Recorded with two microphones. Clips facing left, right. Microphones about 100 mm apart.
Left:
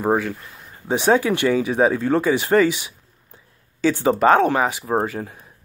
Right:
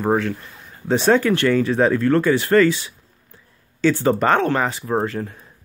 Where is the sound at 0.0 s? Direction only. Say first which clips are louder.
Right 1 dB; 10° left (ahead or behind).